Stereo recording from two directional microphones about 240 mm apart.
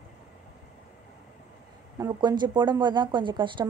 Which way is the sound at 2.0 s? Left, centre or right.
Centre.